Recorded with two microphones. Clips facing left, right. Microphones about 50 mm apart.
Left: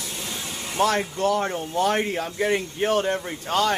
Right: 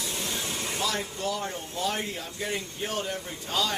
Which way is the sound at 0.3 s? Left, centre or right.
Centre.